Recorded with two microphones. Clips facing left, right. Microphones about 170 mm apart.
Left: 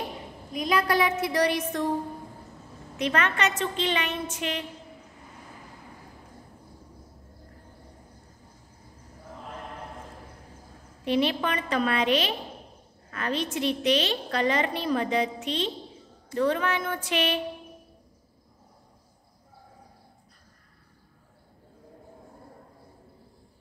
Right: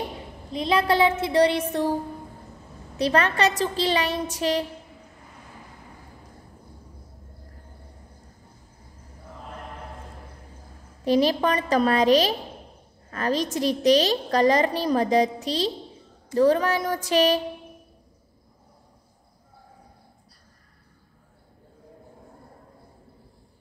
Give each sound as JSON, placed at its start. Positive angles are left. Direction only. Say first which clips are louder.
{"t": 0.5, "sound": "a woman's voice", "louder": "right 3 dB", "side_deg": -30}
{"t": 3.0, "sound": "a woman's voice", "louder": "right 5 dB", "side_deg": -35}
{"t": 11.1, "sound": "a woman's voice", "louder": "right 5 dB", "side_deg": -40}